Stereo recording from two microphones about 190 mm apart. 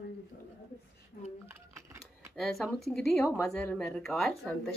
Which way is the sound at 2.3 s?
Centre (ahead or behind).